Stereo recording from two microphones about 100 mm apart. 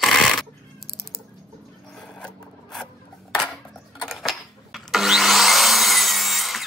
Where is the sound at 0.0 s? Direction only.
Centre (ahead or behind).